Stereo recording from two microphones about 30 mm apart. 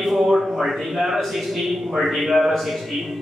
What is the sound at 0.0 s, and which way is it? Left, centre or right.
A man's voice, centre.